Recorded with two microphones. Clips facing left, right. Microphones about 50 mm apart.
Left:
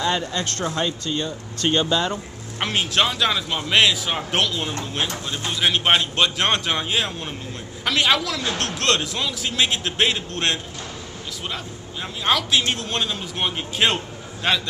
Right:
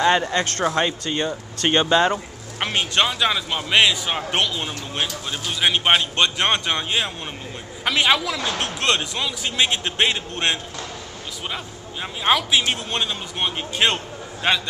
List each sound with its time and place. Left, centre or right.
0.0 s speech: right
2.6 s a man's voice: centre